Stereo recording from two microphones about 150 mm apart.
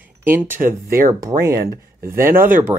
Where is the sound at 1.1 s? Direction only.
25° right (ahead or behind).